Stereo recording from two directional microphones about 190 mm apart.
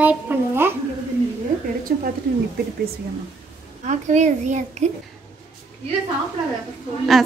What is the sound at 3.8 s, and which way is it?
A child's voice, 40° right (ahead or behind).